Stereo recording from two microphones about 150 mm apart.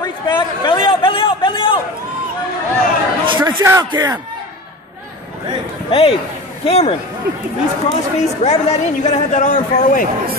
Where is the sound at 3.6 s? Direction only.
20° right (ahead or behind).